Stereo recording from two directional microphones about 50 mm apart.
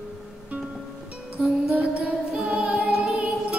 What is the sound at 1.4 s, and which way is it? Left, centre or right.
Music, right.